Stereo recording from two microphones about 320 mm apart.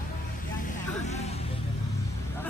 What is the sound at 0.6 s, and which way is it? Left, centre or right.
Vehicle, left.